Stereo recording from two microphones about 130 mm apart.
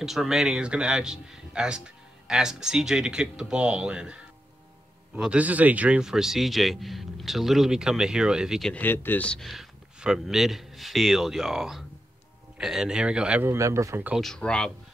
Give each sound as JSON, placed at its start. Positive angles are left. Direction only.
{"t": 0.0, "sound": "speech", "side_deg": 0}
{"t": 8.7, "sound": "a man's voice", "side_deg": 15}
{"t": 13.5, "sound": "speech", "side_deg": -25}
{"t": 14.2, "sound": "speech", "side_deg": 5}